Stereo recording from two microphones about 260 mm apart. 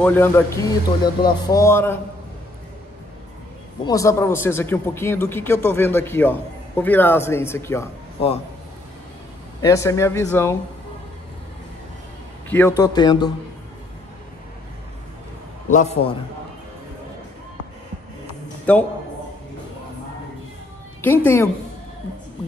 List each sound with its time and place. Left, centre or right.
0.0 s speech: centre
3.8 s speech: centre
9.6 s speech: centre
12.4 s speech: centre
15.7 s a man's voice: left
18.7 s a man's voice: centre
21.0 s speech: centre